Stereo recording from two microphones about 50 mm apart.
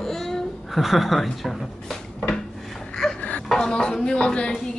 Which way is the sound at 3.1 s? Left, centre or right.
Left.